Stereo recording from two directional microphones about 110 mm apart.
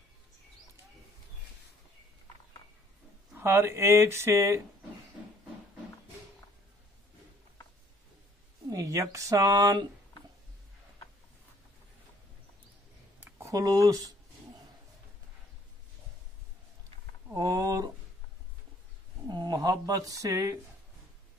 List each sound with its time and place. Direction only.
3.3 s speech: 20° right (ahead or behind)
8.7 s speech: 30° right (ahead or behind)
13.5 s speech: 30° right (ahead or behind)
17.3 s a sound: 30° right (ahead or behind)
19.2 s speech: 40° right (ahead or behind)